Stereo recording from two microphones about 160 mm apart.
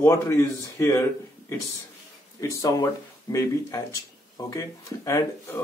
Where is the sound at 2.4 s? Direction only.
20° left (ahead or behind).